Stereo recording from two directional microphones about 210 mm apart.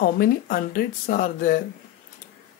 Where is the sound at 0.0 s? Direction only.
45° left (ahead or behind).